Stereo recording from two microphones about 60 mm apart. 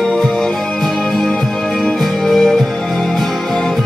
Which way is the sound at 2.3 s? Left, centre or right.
Centre.